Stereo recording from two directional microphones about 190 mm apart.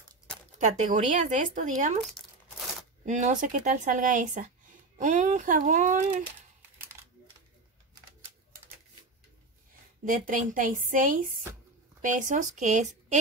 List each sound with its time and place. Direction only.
0.6 s speech: 40° right (ahead or behind)
2.0 s a sound: centre (ahead or behind)
3.1 s speech: 40° right (ahead or behind)
10.0 s speech: 45° right (ahead or behind)